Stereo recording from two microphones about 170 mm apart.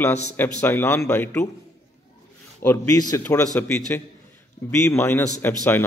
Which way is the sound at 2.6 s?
20° left (ahead or behind).